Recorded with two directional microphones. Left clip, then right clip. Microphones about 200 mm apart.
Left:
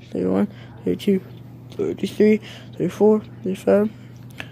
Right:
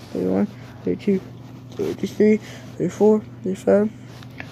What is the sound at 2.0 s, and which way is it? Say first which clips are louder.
Speech: even; 5° left (ahead or behind).